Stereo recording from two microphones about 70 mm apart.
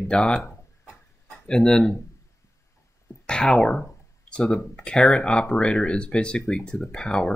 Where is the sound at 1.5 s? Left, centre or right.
Centre.